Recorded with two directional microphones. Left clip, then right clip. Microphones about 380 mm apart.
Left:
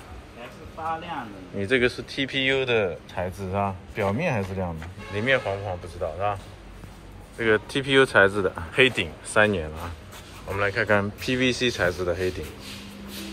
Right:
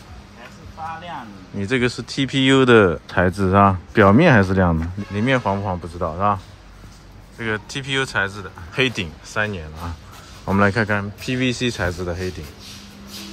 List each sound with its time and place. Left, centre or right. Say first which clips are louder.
1.6 s speech: right 1 dB; centre
7.3 s speech: left 3 dB; centre